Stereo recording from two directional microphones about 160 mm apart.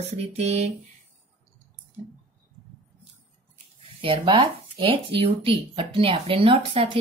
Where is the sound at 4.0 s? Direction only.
35° right (ahead or behind).